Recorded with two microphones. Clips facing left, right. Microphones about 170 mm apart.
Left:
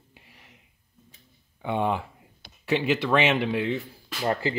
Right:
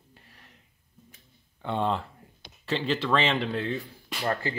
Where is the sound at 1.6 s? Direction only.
10° left (ahead or behind).